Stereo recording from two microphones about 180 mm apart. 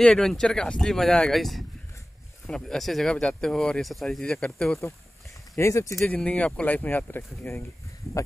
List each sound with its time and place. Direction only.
0.0 s speech: 5° left (ahead or behind)
5.6 s speech: 15° left (ahead or behind)